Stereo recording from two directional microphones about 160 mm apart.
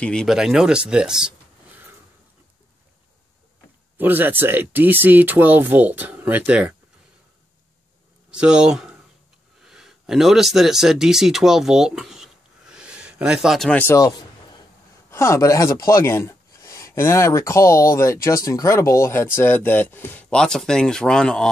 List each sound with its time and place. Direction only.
0.0 s speech: 5° left (ahead or behind)
4.0 s speech: 10° right (ahead or behind)
8.3 s speech: 5° right (ahead or behind)